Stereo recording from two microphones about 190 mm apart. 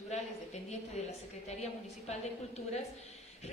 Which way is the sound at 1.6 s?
35° left (ahead or behind).